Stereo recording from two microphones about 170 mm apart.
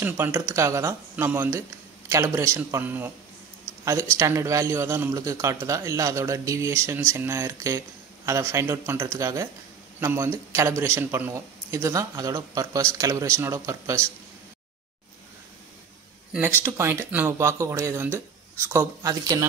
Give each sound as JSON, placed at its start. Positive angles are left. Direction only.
{"t": 0.0, "sound": "a man's voice", "side_deg": -10}
{"t": 4.2, "sound": "a man's voice", "side_deg": -15}
{"t": 16.3, "sound": "a man's voice", "side_deg": -10}